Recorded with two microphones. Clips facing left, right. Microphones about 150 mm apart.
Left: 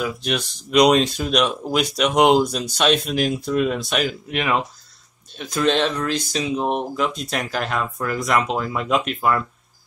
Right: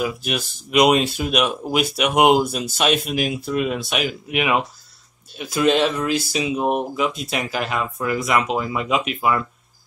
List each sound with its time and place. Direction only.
0.0 s speech: 5° right (ahead or behind)